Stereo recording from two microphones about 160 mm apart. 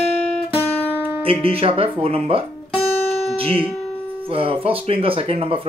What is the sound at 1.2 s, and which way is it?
Speech, 35° right (ahead or behind).